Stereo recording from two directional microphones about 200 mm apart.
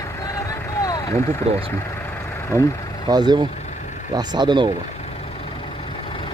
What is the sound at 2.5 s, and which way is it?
Speech, 15° right (ahead or behind).